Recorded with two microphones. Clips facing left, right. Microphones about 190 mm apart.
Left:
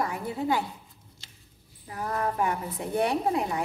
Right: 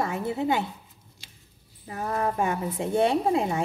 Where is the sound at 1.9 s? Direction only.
25° right (ahead or behind).